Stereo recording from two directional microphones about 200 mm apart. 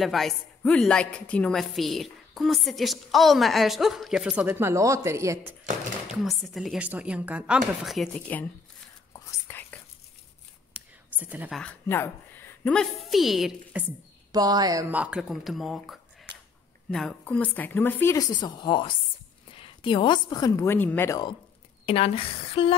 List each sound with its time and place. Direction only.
0.0 s a woman's voice: centre (ahead or behind)
6.1 s a woman's voice: centre (ahead or behind)
9.1 s whispering: 10° left (ahead or behind)
10.7 s whispering: 10° right (ahead or behind)
11.6 s a woman's voice: 10° left (ahead or behind)
14.3 s a woman's voice: 20° right (ahead or behind); by 21.4 s 15° left (ahead or behind)
21.8 s a woman's voice: 30° left (ahead or behind)